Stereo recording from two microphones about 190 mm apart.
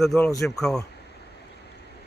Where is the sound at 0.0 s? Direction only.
Centre (ahead or behind).